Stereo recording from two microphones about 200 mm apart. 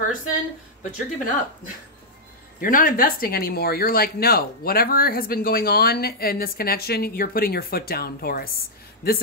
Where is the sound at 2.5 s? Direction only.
45° left (ahead or behind).